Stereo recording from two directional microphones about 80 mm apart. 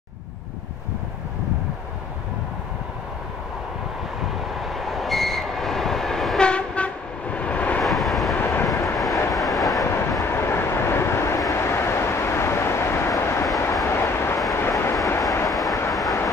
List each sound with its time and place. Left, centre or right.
4.6 s train: centre
7.8 s vehicle: centre
8.4 s vehicle: left
8.7 s vehicle: left
9.3 s train: centre
9.8 s train: left
10.2 s vehicle: left
15.9 s vehicle: centre